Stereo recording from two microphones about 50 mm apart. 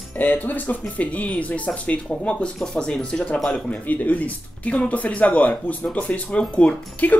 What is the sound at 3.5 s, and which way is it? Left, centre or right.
Speech, left.